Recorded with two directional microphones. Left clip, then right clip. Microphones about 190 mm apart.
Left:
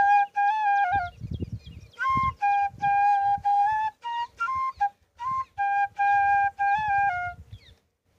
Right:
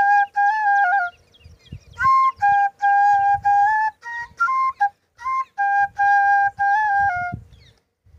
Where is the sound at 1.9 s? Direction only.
Centre (ahead or behind).